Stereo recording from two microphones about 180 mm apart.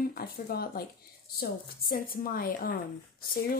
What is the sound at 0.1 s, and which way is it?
A woman's voice, 55° left (ahead or behind).